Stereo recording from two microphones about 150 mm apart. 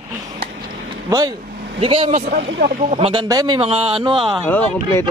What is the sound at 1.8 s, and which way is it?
Speech, 35° right (ahead or behind).